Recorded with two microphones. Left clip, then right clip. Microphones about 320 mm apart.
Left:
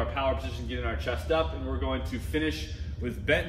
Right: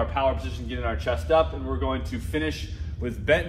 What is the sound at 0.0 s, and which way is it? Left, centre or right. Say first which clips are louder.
A man's voice: right 4 dB; centre.